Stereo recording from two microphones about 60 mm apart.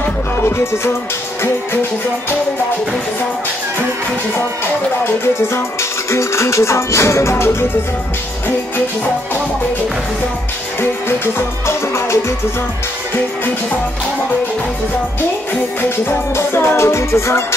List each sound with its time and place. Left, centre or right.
0.4 s music: left
5.0 s music: left
10.8 s music: left
16.1 s music: left